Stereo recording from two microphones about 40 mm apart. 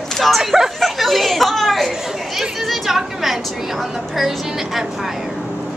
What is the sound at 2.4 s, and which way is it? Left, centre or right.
A woman's voice, centre.